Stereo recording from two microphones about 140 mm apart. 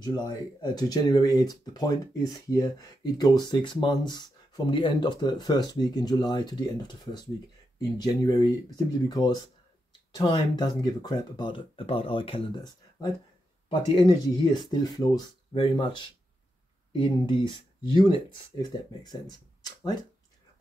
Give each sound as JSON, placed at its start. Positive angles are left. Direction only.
{"t": 0.0, "sound": "speech", "side_deg": 30}
{"t": 16.9, "sound": "speech", "side_deg": 35}